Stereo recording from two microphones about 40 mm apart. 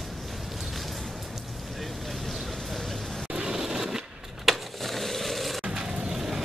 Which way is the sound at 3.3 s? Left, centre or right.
Centre.